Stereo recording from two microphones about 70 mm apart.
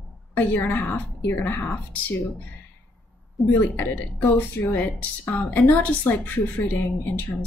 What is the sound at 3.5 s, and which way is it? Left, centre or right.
A woman's voice, left.